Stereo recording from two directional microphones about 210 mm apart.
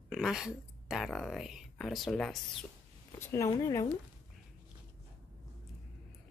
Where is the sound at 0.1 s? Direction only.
Centre (ahead or behind).